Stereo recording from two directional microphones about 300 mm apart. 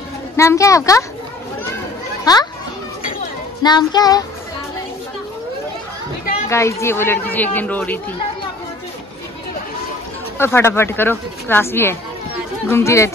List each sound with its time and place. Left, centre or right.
0.4 s speech: centre
2.3 s speech: centre
3.6 s speech: centre
6.5 s speech: centre
10.3 s speech: centre